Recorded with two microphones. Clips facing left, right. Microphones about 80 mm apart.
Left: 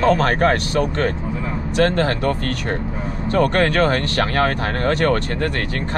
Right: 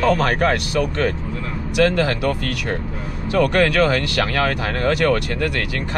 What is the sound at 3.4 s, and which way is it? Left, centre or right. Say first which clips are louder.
Speech: right 1 dB; left.